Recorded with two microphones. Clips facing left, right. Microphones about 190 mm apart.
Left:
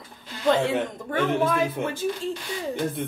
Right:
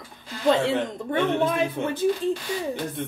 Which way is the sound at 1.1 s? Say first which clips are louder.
Even; 25° right (ahead or behind).